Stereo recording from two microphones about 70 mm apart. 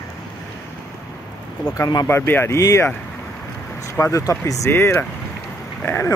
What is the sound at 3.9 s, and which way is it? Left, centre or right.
Speech, left.